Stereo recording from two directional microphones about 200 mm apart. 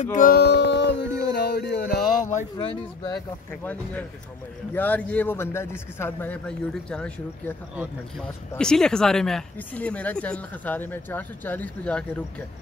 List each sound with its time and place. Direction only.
0.0 s a sound: 40° left (ahead or behind)
2.2 s speech: 40° left (ahead or behind)
4.7 s speech: 10° left (ahead or behind)
7.7 s speech: 5° right (ahead or behind)